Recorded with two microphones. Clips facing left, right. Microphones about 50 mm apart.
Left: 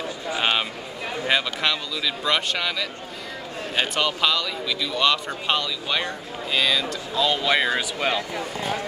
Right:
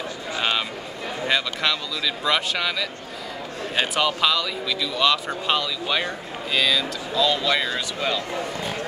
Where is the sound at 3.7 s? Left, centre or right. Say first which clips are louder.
Right 1 dB; centre.